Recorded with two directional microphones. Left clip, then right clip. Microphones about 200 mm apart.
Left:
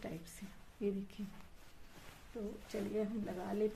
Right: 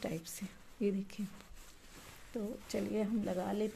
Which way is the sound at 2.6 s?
45° right (ahead or behind).